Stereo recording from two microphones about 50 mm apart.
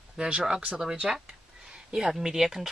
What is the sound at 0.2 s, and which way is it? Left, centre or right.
Speech, centre.